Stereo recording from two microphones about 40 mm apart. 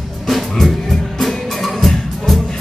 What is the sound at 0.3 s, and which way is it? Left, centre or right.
Music, centre.